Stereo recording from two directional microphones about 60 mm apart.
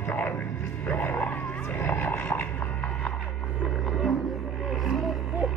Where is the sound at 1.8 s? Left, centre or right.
Left.